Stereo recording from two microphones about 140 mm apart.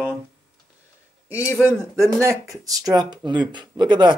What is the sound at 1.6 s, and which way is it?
Speech, 15° right (ahead or behind).